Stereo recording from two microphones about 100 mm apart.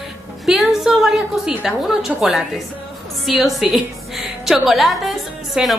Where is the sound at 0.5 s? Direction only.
Centre (ahead or behind).